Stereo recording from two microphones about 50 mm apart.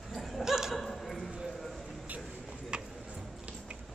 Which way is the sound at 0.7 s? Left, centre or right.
Centre.